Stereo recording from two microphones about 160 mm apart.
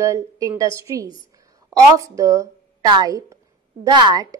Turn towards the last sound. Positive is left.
turn(degrees=-25)  # may be behind; listen again after turning